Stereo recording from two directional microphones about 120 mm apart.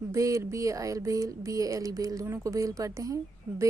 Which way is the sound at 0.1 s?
25° right (ahead or behind).